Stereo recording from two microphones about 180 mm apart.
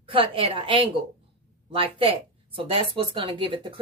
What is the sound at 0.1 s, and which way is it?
Speech, 30° right (ahead or behind).